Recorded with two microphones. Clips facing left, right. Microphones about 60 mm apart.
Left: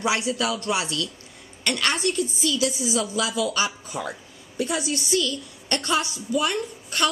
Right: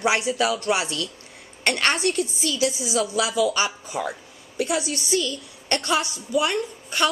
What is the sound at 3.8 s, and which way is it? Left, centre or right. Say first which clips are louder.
Speech: right 3 dB; centre.